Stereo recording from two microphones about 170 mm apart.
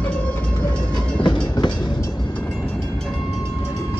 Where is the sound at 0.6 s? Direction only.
25° left (ahead or behind).